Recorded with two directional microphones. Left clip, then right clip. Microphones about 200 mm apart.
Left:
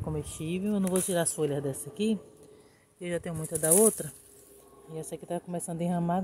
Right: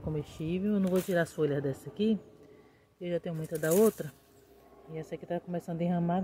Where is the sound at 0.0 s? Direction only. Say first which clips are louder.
Left 1 dB; 5° left (ahead or behind).